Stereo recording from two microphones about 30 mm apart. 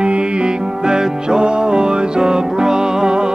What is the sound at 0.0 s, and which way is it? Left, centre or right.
Music, right.